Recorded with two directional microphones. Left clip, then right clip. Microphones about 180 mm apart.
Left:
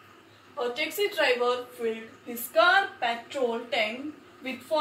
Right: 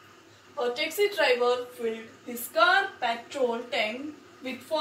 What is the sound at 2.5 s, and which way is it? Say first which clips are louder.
Speech: left 1 dB; 15° left (ahead or behind).